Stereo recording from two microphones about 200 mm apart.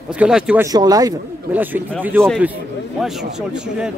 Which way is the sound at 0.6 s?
20° right (ahead or behind).